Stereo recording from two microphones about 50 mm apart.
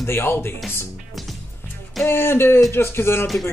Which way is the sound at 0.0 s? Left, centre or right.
Left.